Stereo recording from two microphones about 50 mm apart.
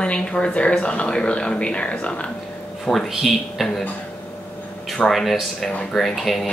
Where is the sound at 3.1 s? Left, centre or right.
Centre.